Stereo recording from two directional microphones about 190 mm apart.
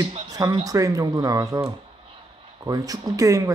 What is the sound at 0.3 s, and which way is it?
Speech, 20° right (ahead or behind).